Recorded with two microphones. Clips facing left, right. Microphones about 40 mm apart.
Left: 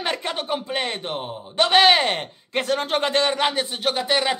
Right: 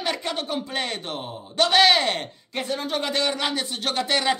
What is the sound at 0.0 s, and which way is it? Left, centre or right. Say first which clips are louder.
Speech: left 1 dB; left.